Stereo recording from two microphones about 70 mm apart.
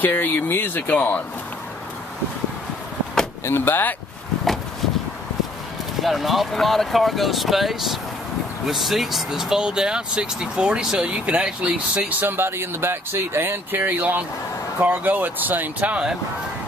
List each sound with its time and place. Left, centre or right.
0.0 s speech: left
3.4 s speech: left
6.0 s speech: centre